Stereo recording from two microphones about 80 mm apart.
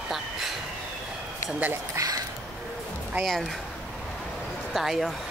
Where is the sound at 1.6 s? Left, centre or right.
Centre.